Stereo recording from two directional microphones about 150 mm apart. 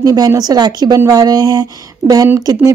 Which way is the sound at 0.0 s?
25° right (ahead or behind).